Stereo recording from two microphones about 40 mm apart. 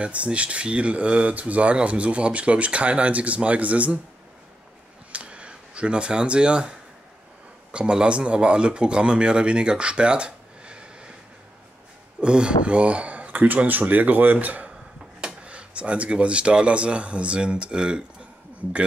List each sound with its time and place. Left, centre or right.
0.0 s speech: right
5.1 s a sound: right
7.7 s speech: right
12.2 s speech: right
15.1 s speech: right